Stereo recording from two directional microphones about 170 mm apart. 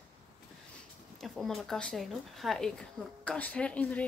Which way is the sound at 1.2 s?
Centre (ahead or behind).